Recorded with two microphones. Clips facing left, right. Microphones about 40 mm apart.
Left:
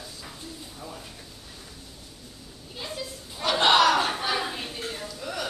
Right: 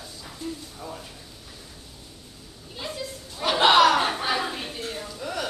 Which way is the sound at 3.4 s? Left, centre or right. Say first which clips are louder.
Right 3 dB; centre.